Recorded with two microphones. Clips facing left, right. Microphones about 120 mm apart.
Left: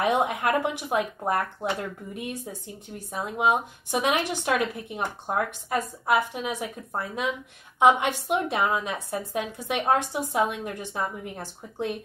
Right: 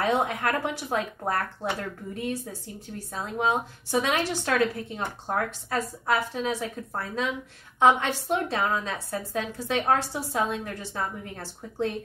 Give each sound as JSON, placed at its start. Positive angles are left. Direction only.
{"t": 0.0, "sound": "a woman's voice", "side_deg": 15}